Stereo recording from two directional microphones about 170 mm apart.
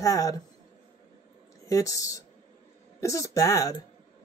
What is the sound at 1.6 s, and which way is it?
Speech, 20° left (ahead or behind).